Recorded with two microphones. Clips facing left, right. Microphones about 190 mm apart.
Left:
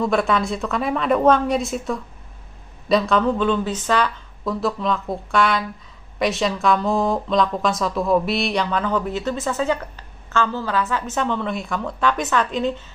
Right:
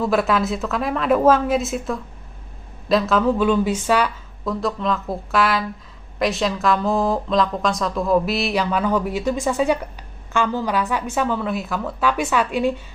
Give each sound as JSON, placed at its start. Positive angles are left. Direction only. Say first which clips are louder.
{"t": 0.0, "sound": "a woman's voice", "louder": "right 1 dB", "side_deg": -5}
{"t": 4.6, "sound": "a woman's voice", "louder": "even", "side_deg": 0}